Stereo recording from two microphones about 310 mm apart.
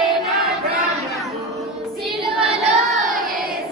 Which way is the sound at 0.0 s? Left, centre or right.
Centre.